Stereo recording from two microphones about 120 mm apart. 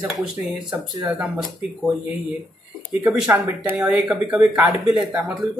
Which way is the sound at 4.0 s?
Centre (ahead or behind).